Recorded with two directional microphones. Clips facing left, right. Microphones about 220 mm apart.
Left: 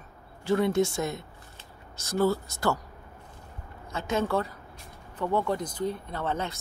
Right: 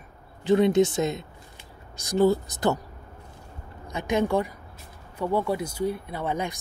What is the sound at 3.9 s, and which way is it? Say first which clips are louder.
Speech: right 3 dB; 15° right (ahead or behind).